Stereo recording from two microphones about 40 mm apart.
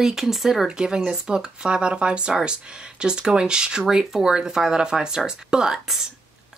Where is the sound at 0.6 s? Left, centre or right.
Centre.